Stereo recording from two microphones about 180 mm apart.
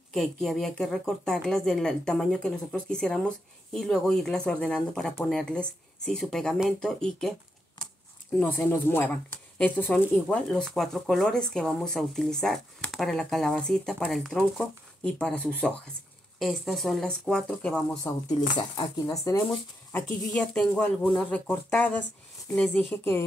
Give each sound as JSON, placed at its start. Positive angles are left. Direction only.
{"t": 0.1, "sound": "speech", "side_deg": 0}
{"t": 8.4, "sound": "speech", "side_deg": 10}
{"t": 18.1, "sound": "speech", "side_deg": 15}
{"t": 19.3, "sound": "speech", "side_deg": 20}
{"t": 19.9, "sound": "speech", "side_deg": 5}